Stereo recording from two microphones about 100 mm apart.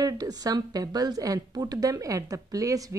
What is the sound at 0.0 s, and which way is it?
A woman's voice, 40° right (ahead or behind).